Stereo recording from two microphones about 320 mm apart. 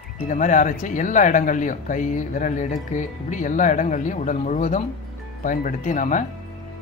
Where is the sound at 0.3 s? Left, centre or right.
Left.